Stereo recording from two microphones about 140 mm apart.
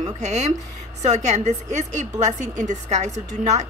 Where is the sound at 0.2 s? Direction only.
55° right (ahead or behind).